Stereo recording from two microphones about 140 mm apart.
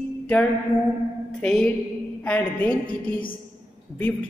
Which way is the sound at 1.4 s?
5° left (ahead or behind).